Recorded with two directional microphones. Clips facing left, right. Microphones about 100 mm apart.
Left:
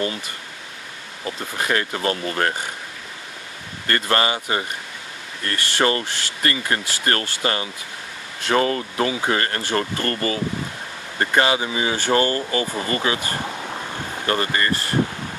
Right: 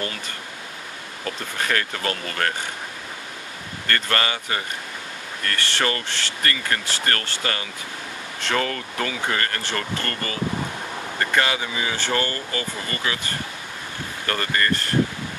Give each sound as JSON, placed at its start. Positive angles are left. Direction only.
{"t": 1.2, "sound": "speech", "side_deg": 20}
{"t": 3.8, "sound": "speech", "side_deg": 25}
{"t": 14.2, "sound": "speech", "side_deg": 20}